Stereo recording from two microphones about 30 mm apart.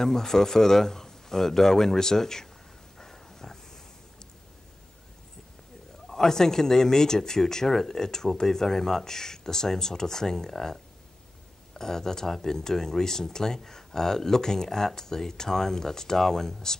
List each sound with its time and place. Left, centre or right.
0.0 s speech: centre
3.0 s a sound: centre
6.0 s speech: centre